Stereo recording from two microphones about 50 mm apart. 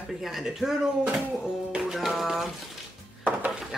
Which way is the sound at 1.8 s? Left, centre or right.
Centre.